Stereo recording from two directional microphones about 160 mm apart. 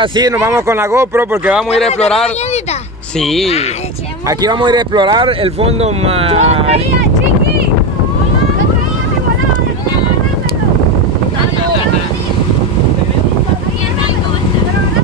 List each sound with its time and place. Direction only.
0.0 s speech: 25° right (ahead or behind)
3.2 s speech: centre (ahead or behind)
4.3 s speech: 25° right (ahead or behind)